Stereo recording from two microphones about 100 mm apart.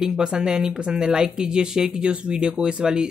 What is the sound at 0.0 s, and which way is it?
Speech, 5° right (ahead or behind).